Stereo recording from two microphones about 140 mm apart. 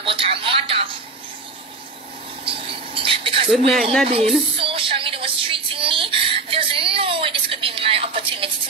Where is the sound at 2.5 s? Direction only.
40° right (ahead or behind).